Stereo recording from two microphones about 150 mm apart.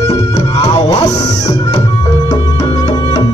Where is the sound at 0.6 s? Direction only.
25° left (ahead or behind).